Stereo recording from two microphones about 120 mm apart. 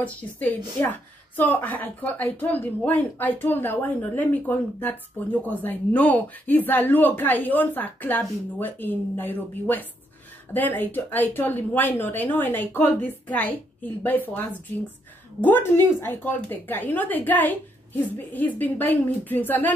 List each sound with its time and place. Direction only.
0.0 s a woman's voice: 15° left (ahead or behind)
15.4 s a woman's voice: 15° left (ahead or behind)